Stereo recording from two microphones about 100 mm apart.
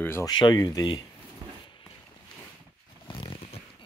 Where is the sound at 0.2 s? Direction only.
45° left (ahead or behind).